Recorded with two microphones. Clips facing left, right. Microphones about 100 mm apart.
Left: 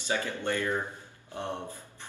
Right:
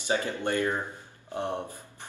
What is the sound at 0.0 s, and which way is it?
Speech, 15° right (ahead or behind).